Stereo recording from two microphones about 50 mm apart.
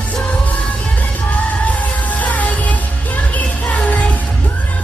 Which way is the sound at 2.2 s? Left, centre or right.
Left.